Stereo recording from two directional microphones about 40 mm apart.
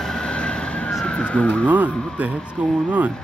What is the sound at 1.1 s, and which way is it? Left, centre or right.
Police car, left.